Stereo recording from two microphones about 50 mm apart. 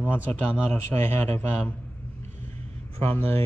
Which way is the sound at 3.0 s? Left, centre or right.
Left.